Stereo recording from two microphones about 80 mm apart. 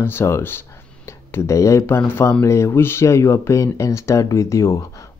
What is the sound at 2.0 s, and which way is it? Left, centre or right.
Speech, left.